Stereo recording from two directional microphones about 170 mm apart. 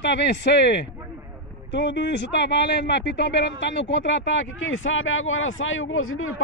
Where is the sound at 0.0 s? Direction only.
90° left.